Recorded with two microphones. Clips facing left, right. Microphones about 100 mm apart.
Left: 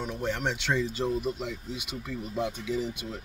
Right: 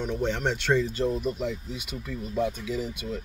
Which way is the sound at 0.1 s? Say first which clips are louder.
Right 4 dB; 10° left (ahead or behind).